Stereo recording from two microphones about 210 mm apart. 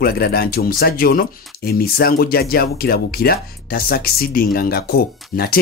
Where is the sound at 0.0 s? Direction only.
45° left (ahead or behind).